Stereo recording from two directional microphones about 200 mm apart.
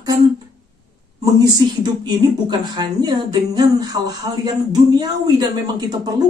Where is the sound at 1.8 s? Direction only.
20° right (ahead or behind).